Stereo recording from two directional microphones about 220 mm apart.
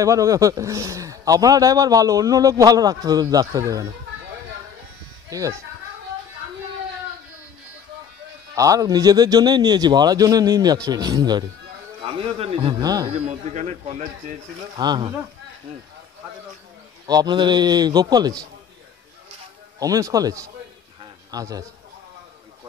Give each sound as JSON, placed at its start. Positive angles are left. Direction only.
{"t": 0.0, "sound": "a man's voice", "side_deg": -15}
{"t": 5.3, "sound": "a man's voice", "side_deg": -15}
{"t": 8.5, "sound": "a man's voice", "side_deg": -15}
{"t": 13.1, "sound": "a man's voice", "side_deg": -30}
{"t": 14.8, "sound": "a man's voice", "side_deg": -20}
{"t": 17.0, "sound": "a man's voice", "side_deg": -20}
{"t": 19.8, "sound": "a man's voice", "side_deg": -15}
{"t": 21.0, "sound": "a sound", "side_deg": -15}